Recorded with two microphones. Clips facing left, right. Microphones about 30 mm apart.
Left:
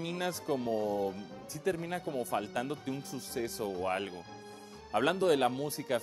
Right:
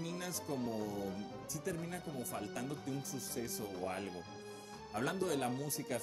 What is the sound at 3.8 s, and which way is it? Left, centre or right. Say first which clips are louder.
Speech: left 7 dB; left.